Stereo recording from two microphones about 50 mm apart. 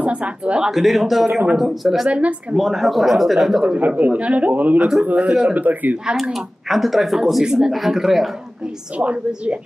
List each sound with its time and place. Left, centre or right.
0.0 s speech: right
0.7 s speech: centre
2.0 s speech: right
2.5 s speech: centre
3.7 s a man's voice: right
6.3 s speech: centre
7.4 s a man's voice: centre
8.9 s speech: right